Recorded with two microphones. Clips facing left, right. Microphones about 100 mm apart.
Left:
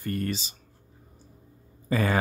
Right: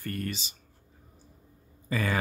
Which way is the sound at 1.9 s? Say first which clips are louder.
Left 4 dB; 35° left (ahead or behind).